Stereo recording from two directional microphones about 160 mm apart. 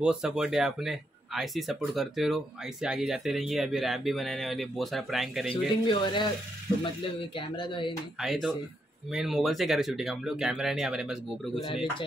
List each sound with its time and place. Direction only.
0.0 s speech: 5° right (ahead or behind)
5.9 s speech: 30° left (ahead or behind)
7.3 s speech: 30° left (ahead or behind)
8.2 s speech: centre (ahead or behind)
11.6 s speech: 35° left (ahead or behind)